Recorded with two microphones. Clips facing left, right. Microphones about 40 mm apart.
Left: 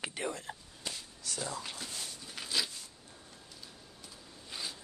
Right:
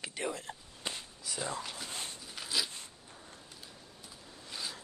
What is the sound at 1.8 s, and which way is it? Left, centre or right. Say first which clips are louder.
Dog: right 2 dB; right.